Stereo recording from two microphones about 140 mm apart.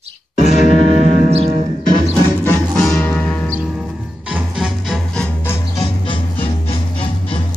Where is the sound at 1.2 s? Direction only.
50° right (ahead or behind).